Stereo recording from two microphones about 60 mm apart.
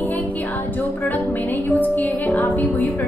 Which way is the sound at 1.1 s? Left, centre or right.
Left.